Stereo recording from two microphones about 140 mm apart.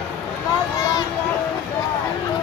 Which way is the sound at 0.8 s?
25° left (ahead or behind).